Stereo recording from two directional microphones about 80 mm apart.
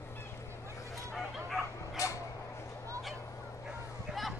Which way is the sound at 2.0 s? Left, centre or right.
Left.